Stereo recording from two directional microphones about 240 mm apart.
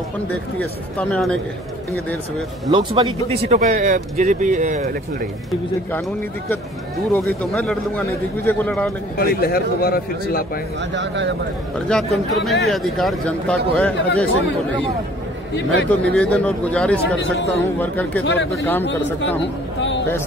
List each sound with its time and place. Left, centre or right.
0.3 s speech: centre
2.7 s speech: right
7.4 s a man's voice: centre
9.2 s a man's voice: left
11.0 s speech: right
11.9 s speech: centre
15.5 s a man's voice: left
16.1 s a man's voice: centre
18.2 s a man's voice: left
18.5 s a man's voice: centre